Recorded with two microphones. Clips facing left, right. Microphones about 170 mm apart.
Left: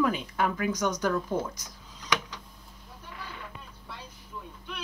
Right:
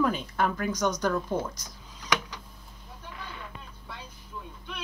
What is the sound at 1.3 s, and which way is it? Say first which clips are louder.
Speech: even; 20° right (ahead or behind).